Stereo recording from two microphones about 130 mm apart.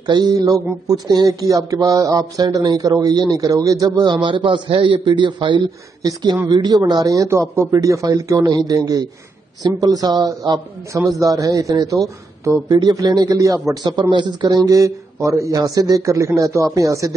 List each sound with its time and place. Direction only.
0.0 s a man's voice: 30° right (ahead or behind)